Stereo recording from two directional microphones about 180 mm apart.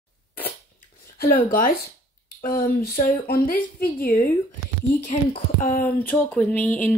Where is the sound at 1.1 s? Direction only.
55° left (ahead or behind).